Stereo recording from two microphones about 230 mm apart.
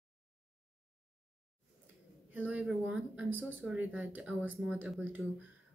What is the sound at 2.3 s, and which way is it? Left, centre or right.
Speech, centre.